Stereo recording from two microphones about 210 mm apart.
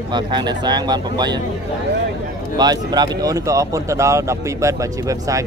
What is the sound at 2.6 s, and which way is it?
Speech, 20° right (ahead or behind).